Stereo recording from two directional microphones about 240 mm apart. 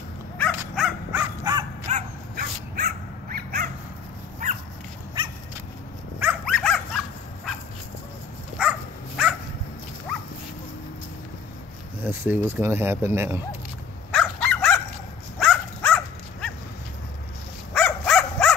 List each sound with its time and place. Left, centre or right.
0.4 s dog: centre
1.9 s dog: right
6.1 s dog: centre
8.5 s dog: centre
12.0 s speech: centre
14.1 s dog: centre
17.7 s dog: centre